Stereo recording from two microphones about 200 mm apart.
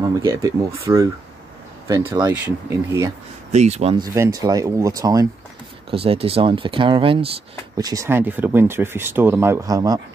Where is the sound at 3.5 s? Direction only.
35° right (ahead or behind).